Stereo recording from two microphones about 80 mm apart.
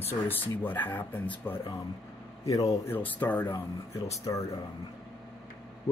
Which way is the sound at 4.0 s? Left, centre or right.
Left.